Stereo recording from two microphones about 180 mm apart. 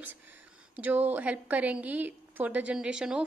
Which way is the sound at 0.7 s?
10° right (ahead or behind).